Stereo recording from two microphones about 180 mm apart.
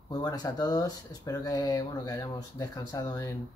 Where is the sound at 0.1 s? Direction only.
20° left (ahead or behind).